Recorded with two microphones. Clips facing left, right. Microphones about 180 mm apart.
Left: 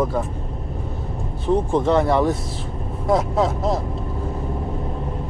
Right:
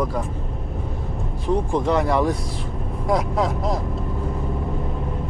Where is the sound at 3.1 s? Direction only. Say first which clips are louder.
Left 3 dB; centre (ahead or behind).